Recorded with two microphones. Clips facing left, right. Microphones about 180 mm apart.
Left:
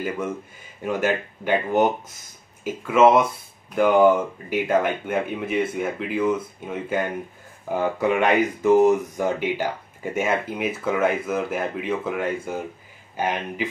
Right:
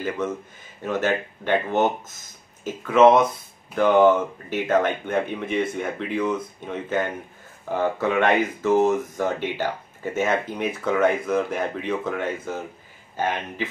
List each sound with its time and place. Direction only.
0.8 s speech: 10° left (ahead or behind)